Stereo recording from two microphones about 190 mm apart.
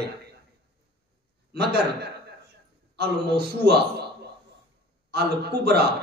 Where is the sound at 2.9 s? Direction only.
60° right (ahead or behind).